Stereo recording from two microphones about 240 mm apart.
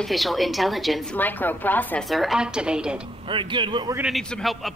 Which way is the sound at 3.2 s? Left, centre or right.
Right.